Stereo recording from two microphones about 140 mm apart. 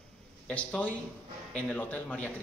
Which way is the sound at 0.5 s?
10° left (ahead or behind).